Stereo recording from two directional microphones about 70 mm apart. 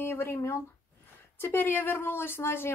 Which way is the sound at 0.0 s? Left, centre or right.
Left.